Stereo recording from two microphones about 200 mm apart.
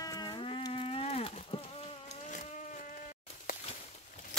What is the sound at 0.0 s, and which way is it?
Livestock, 20° left (ahead or behind).